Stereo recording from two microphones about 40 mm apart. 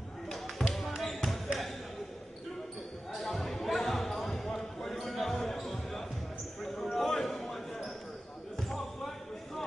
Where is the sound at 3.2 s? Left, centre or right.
Centre.